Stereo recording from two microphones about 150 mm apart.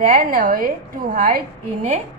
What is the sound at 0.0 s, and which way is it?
A woman's voice, 70° right (ahead or behind).